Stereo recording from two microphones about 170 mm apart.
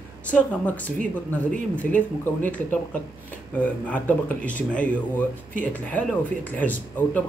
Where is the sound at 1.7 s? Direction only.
10° left (ahead or behind).